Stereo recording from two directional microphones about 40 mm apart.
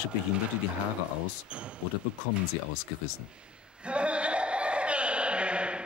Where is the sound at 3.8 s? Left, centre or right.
Right.